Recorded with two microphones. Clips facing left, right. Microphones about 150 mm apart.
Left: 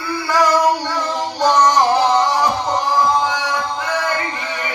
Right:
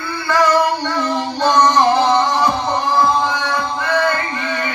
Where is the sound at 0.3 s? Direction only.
10° left (ahead or behind).